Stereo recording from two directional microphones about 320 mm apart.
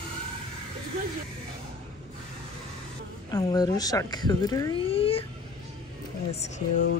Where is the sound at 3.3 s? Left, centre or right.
Centre.